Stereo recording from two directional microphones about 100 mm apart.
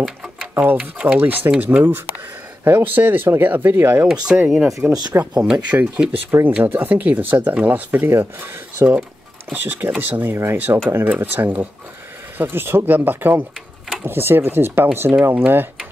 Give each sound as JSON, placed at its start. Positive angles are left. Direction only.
{"t": 0.0, "sound": "speech", "side_deg": -10}
{"t": 4.5, "sound": "speech", "side_deg": 0}
{"t": 5.4, "sound": "speech", "side_deg": -15}